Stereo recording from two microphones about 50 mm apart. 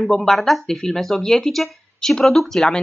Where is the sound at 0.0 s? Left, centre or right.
Centre.